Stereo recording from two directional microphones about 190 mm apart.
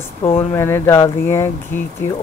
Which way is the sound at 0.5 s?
15° left (ahead or behind).